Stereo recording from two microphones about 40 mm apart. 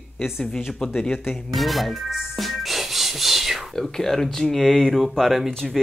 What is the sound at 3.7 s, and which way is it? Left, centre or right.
Speech, centre.